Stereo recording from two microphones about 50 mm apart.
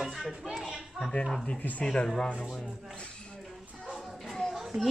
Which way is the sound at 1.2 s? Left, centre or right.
Centre.